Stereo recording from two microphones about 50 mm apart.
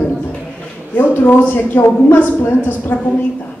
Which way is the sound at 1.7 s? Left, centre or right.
Left.